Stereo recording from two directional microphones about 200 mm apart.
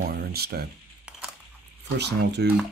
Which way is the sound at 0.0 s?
50° right (ahead or behind).